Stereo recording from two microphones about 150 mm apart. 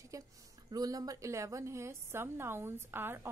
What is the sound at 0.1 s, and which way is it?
Speech, 20° right (ahead or behind).